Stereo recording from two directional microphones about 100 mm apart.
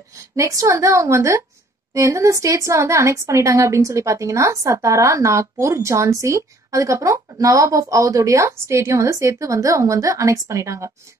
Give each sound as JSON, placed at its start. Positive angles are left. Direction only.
{"t": 0.1, "sound": "a woman's voice", "side_deg": -30}